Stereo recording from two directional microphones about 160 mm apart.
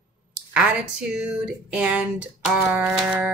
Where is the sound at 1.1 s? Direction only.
5° right (ahead or behind).